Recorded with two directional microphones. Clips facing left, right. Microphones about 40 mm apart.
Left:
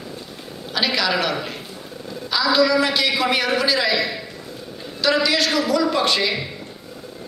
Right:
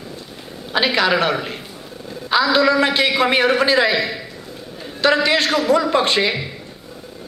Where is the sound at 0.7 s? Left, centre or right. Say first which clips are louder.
Right 4 dB; right.